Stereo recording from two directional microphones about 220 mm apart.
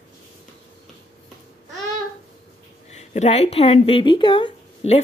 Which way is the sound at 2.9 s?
30° left (ahead or behind).